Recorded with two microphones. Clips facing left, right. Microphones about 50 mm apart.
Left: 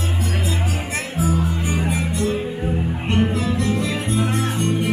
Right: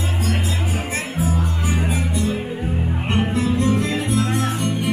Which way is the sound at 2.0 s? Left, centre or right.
Left.